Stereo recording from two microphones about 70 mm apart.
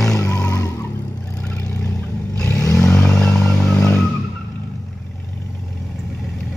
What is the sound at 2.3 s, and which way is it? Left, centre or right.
Vehicle, centre.